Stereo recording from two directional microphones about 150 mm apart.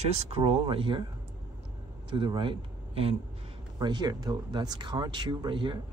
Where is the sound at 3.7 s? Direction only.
30° right (ahead or behind).